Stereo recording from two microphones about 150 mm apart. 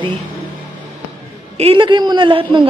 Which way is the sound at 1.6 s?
35° right (ahead or behind).